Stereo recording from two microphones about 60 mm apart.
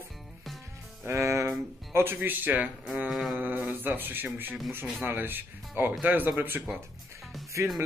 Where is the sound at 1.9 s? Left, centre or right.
Right.